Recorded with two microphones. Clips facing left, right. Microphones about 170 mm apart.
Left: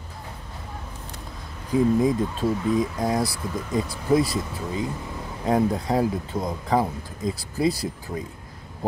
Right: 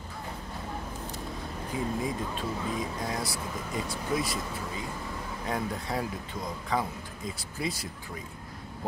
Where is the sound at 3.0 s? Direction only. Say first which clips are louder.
Left 9 dB; 35° left (ahead or behind).